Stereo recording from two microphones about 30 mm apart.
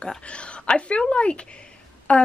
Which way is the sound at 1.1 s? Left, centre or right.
Left.